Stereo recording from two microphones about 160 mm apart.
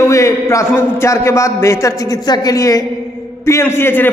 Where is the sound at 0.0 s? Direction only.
20° left (ahead or behind).